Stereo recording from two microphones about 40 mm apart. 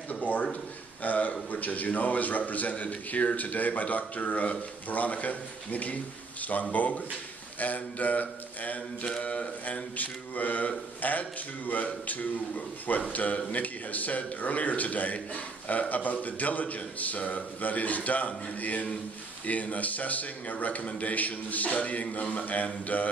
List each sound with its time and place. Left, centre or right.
0.1 s a sound: left
1.5 s a man's voice: left
9.9 s a man's voice: left